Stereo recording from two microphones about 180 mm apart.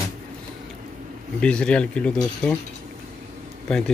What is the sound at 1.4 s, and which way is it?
Speech, 5° left (ahead or behind).